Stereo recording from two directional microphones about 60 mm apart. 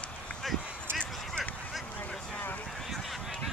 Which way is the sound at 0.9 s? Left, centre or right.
Centre.